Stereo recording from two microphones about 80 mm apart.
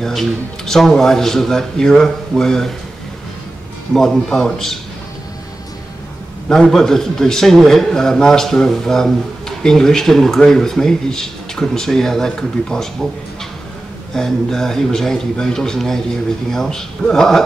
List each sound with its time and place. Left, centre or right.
0.0 s a man's voice: centre
3.9 s a man's voice: centre
6.5 s speech: centre
14.1 s speech: centre